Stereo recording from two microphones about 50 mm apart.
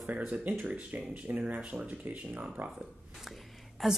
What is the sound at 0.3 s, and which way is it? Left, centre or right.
Speech, right.